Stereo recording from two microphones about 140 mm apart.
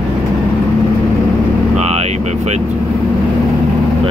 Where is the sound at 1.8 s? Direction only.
50° right (ahead or behind).